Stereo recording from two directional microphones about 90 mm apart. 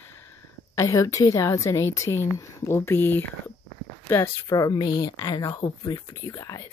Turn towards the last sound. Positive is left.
turn(degrees=40)  # may be behind; listen again after turning